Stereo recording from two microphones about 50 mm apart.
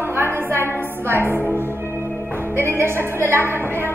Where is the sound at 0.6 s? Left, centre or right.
Left.